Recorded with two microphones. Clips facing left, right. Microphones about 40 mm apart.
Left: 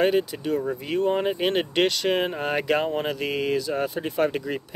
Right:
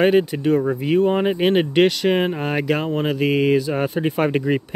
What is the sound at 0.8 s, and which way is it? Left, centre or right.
Speech, centre.